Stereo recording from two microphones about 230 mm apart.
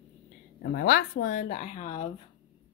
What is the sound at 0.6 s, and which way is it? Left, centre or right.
Speech, left.